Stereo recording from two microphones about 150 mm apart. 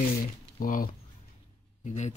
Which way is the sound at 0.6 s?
65° left (ahead or behind).